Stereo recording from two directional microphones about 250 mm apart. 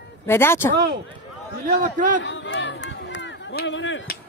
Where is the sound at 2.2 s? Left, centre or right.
Left.